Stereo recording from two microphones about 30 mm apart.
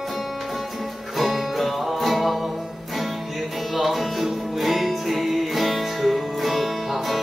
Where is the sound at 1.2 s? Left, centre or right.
Centre.